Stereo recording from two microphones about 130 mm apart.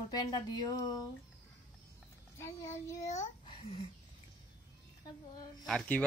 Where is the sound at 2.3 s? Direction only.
20° left (ahead or behind).